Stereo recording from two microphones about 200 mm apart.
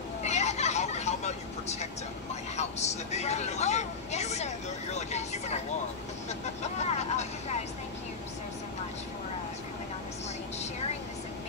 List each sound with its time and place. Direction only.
0.2 s vehicle: 35° left (ahead or behind)
6.6 s vehicle: 35° left (ahead or behind)